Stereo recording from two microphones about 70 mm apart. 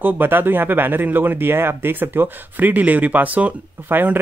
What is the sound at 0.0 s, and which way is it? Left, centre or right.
Speech, right.